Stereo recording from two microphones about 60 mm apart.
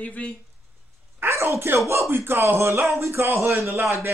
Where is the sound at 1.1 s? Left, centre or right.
Right.